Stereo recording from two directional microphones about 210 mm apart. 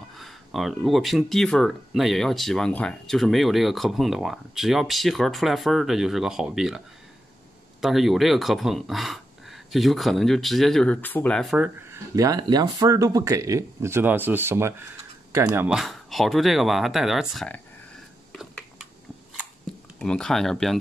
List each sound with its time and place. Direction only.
0.2 s speech: centre (ahead or behind)
7.8 s speech: centre (ahead or behind)
18.3 s a sound: centre (ahead or behind)
20.0 s speech: 5° left (ahead or behind)